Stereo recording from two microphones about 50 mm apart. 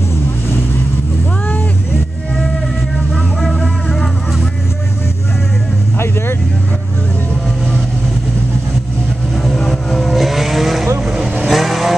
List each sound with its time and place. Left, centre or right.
3.1 s vehicle: centre
3.5 s music: centre
5.9 s vehicle: left
9.6 s vehicle: centre